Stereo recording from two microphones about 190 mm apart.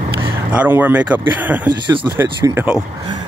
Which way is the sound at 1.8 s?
20° right (ahead or behind).